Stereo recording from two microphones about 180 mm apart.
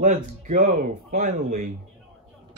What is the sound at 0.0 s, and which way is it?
Speech, 45° right (ahead or behind).